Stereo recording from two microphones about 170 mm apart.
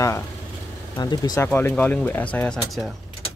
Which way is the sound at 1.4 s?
10° left (ahead or behind).